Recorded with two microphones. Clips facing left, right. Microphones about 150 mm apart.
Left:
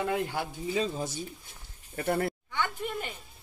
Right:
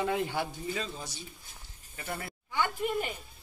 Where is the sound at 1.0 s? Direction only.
50° left (ahead or behind).